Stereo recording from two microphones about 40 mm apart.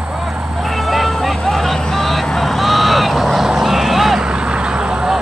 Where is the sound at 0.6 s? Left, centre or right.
Centre.